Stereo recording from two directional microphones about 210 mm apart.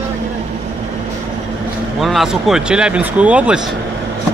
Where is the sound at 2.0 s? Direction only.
Centre (ahead or behind).